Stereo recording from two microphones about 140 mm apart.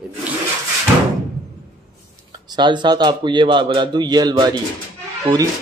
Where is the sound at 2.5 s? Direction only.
35° right (ahead or behind).